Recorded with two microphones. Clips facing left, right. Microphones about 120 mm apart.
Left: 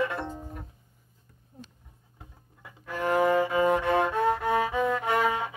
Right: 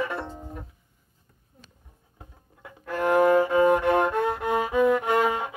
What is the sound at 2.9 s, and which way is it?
Violin, 50° right (ahead or behind).